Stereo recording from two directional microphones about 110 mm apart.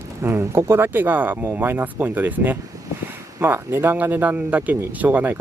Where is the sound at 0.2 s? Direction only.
20° right (ahead or behind).